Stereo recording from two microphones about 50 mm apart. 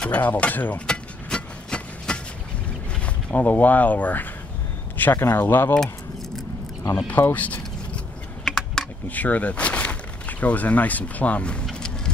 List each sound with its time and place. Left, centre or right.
0.1 s speech: left
0.7 s a sound: centre
3.3 s speech: left
4.9 s a sound: left
5.3 s speech: left
7.1 s speech: left
7.4 s vehicle: left
8.5 s typing: centre
9.1 s speech: left